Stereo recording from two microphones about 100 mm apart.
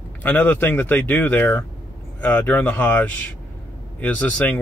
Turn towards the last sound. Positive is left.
turn(degrees=15)  # may be behind; listen again after turning